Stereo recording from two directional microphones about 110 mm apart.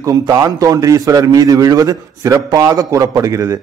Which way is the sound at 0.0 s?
30° right (ahead or behind).